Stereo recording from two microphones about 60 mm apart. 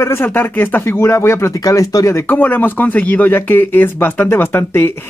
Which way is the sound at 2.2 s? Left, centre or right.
Left.